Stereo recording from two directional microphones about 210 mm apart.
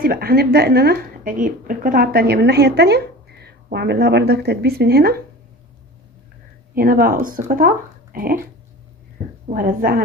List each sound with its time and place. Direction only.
0.0 s a woman's voice: 45° right (ahead or behind)
6.7 s a woman's voice: 45° right (ahead or behind)
9.5 s a woman's voice: 40° right (ahead or behind)